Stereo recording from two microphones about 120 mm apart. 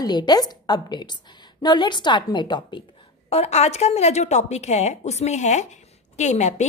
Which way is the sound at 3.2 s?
60° left (ahead or behind).